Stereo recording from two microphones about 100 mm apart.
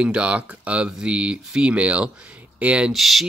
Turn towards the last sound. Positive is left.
turn(degrees=0)  # may be behind; listen again after turning